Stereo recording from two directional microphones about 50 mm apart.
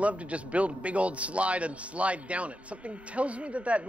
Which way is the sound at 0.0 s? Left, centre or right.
Right.